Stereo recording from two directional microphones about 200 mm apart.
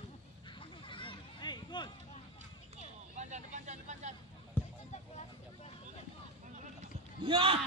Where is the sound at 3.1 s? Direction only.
35° right (ahead or behind).